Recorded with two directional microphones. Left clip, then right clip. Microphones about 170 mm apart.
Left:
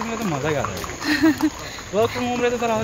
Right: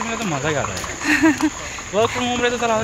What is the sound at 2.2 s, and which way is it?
Speech, 5° left (ahead or behind).